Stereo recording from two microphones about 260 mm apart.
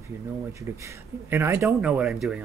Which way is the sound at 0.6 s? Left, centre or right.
Centre.